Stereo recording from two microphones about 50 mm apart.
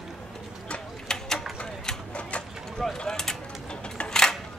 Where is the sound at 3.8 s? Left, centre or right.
Left.